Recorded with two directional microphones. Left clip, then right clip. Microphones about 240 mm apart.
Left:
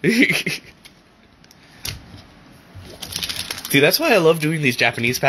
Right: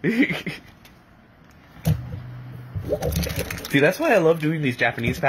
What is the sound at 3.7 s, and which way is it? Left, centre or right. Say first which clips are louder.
Speech: left 3 dB; left.